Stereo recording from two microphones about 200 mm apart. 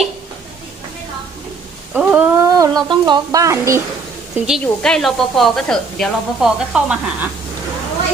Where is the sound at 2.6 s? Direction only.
20° right (ahead or behind).